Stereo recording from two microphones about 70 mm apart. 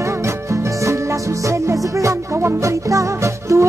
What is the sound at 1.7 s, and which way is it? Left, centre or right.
Music, right.